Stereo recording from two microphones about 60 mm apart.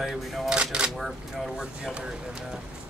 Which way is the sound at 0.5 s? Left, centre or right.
Centre.